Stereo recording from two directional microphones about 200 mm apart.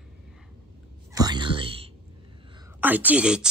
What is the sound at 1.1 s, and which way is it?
Whispering, 20° right (ahead or behind).